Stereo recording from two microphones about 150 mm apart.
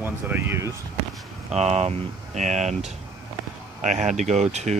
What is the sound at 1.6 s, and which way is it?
Speech, 45° right (ahead or behind).